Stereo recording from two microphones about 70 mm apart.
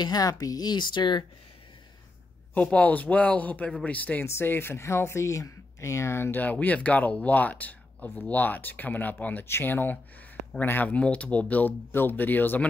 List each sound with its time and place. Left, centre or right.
0.0 s speech: left
2.5 s speech: centre
4.3 s speech: left
6.4 s speech: left